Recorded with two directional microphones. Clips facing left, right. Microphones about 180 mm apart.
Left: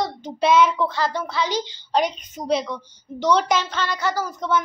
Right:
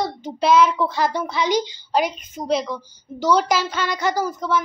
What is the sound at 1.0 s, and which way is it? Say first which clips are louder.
A woman's voice: right 2 dB; 15° right (ahead or behind).